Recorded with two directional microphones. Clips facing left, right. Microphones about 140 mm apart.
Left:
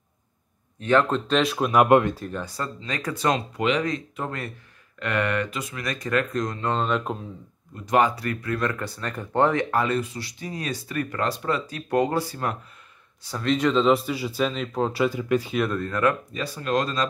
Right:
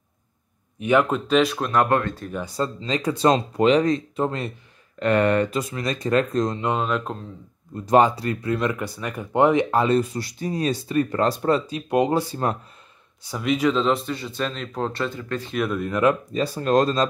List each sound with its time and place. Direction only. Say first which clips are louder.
0.7 s speech: right 1 dB; 10° right (ahead or behind); by 2.1 s 15° left (ahead or behind)
2.3 s speech: right 5 dB; 20° right (ahead or behind)
6.8 s speech: even; centre (ahead or behind)
7.7 s speech: right 4 dB; 30° right (ahead or behind)
9.9 s speech: right 6 dB; 40° right (ahead or behind)
11.6 s speech: right 2 dB; 20° right (ahead or behind)
13.2 s speech: right 1 dB; 10° right (ahead or behind); by 15.5 s 10° left (ahead or behind)
15.5 s speech: even; centre (ahead or behind)
15.8 s speech: right 7 dB; 20° right (ahead or behind)
16.3 s speech: right 6 dB; 40° right (ahead or behind)